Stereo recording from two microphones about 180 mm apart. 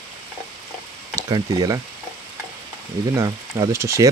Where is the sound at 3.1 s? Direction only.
20° right (ahead or behind).